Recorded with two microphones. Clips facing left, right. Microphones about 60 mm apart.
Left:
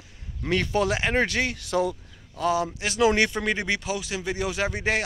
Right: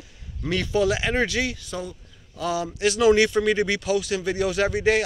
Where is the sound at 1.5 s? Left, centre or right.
Left.